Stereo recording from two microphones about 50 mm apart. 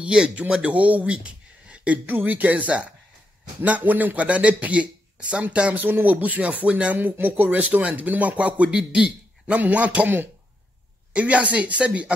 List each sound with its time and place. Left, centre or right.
0.0 s speech: right
2.0 s speech: right
7.0 s speech: right
8.6 s a man's voice: centre
9.5 s speech: right
11.1 s speech: right